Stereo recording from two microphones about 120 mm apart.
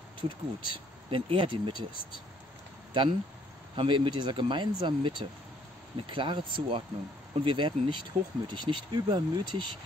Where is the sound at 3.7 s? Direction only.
45° right (ahead or behind).